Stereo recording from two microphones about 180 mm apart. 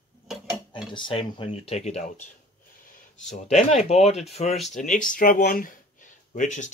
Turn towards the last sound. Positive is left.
turn(degrees=45)  # may be behind; listen again after turning